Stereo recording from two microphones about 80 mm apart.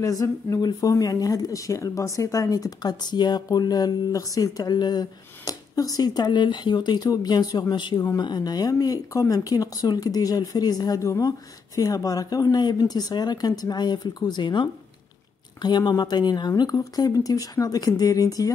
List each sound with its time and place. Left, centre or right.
0.0 s a woman's voice: left
7.7 s speech: left
8.2 s a woman's voice: left
11.0 s speech: left
15.6 s a woman's voice: left